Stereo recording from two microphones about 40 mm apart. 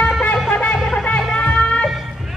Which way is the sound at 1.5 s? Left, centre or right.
Left.